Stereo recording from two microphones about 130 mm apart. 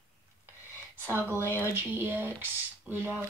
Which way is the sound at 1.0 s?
15° right (ahead or behind).